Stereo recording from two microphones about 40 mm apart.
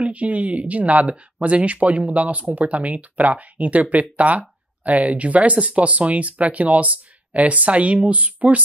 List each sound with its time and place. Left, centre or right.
0.0 s speech: right